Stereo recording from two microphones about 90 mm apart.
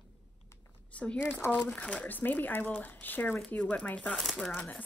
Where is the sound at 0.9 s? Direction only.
15° left (ahead or behind).